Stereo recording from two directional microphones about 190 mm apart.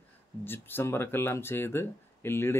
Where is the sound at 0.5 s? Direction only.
10° left (ahead or behind).